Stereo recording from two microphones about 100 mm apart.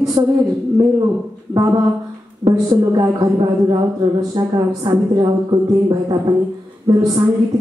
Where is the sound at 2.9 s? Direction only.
40° right (ahead or behind).